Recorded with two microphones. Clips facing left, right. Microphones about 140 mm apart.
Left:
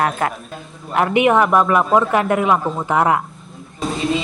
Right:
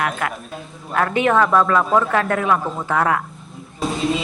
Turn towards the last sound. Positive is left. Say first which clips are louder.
# even
turn(degrees=0)  # may be behind; listen again after turning